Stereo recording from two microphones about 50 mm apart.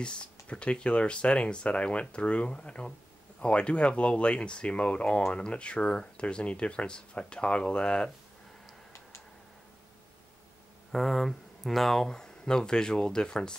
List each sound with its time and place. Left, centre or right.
0.0 s speech: left
10.9 s speech: centre